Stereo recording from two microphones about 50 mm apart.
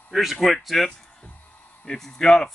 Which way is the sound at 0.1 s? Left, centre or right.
Centre.